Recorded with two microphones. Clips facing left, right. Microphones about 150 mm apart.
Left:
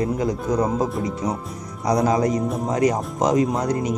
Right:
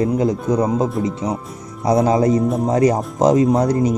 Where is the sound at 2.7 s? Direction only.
35° right (ahead or behind).